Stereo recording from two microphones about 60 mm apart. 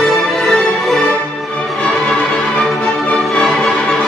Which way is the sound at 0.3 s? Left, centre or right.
Centre.